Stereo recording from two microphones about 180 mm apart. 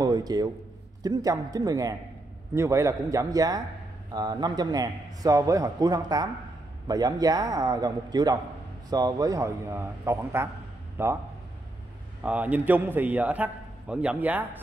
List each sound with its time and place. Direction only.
0.0 s a sound: 20° right (ahead or behind)
1.0 s a man's voice: 20° right (ahead or behind)
12.2 s a man's voice: 5° right (ahead or behind)